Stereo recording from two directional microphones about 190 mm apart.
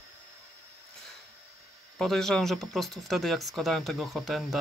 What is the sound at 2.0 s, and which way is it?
Speech, centre (ahead or behind).